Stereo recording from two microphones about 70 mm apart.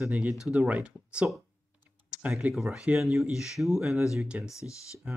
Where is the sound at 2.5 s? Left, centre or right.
Centre.